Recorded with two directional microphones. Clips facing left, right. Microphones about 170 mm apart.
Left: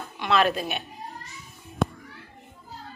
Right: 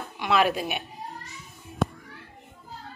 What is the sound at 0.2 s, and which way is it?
Speech, 10° right (ahead or behind).